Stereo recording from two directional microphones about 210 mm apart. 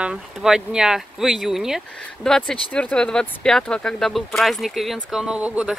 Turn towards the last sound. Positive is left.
turn(degrees=-5)  # may be behind; listen again after turning